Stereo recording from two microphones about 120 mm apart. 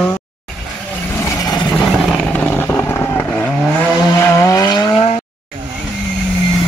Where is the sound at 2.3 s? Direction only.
15° left (ahead or behind).